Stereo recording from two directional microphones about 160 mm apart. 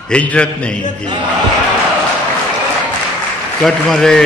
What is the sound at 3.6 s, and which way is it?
Speech, 5° left (ahead or behind).